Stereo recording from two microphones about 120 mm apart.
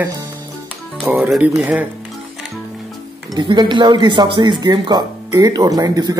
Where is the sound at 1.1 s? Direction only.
5° right (ahead or behind).